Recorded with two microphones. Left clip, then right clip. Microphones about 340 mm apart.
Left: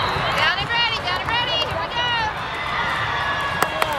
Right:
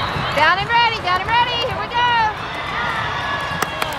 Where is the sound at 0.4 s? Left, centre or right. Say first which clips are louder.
Right 8 dB; centre.